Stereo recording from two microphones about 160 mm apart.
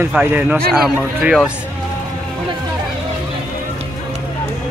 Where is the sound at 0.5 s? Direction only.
Centre (ahead or behind).